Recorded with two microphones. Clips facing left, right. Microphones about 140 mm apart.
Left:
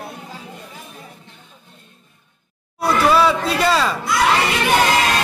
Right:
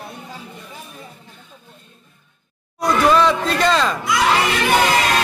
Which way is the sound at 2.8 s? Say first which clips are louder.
Even; 5° left (ahead or behind).